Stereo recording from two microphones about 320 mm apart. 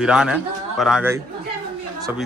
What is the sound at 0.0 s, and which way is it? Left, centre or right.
A man's voice, centre.